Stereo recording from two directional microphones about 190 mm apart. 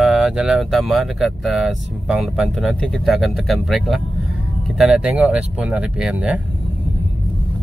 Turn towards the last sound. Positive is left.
turn(degrees=-5)  # may be behind; listen again after turning